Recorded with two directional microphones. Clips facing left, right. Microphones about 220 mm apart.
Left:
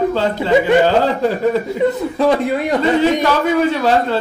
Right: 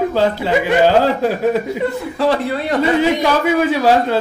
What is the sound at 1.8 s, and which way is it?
A man's voice, 20° left (ahead or behind).